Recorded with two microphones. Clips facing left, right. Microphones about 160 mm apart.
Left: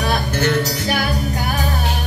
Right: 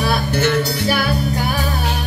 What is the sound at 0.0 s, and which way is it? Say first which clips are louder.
Music: right 1 dB; 40° left (ahead or behind).